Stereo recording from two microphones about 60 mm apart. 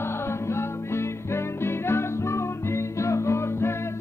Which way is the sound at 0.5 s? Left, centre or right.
Left.